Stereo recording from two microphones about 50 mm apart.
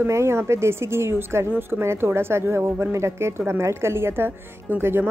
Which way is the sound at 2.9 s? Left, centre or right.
Right.